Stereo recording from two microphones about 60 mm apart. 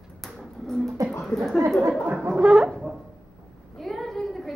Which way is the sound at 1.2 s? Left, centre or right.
Centre.